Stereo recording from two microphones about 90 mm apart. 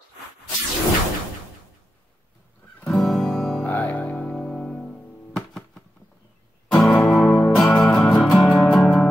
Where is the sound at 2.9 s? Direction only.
5° left (ahead or behind).